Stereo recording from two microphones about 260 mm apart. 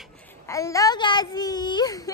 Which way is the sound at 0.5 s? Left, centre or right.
Centre.